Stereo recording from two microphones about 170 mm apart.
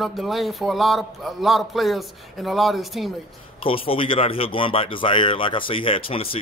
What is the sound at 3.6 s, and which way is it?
Speech, 30° left (ahead or behind).